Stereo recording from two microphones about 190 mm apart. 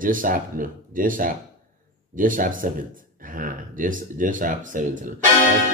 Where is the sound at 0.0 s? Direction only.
45° right (ahead or behind).